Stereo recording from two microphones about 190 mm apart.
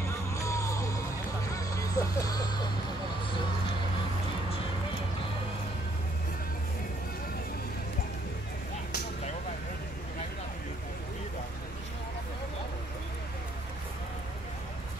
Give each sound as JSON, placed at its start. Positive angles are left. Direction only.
{"t": 0.0, "sound": "music", "side_deg": 15}